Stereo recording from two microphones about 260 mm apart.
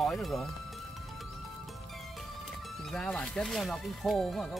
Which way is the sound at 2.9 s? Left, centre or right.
Centre.